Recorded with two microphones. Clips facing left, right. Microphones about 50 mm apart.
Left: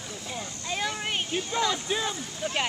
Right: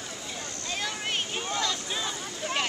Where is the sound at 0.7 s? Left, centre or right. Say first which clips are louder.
Left 2 dB; centre.